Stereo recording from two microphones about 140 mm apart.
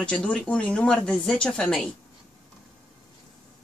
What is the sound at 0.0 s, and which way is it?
Speech, 10° left (ahead or behind).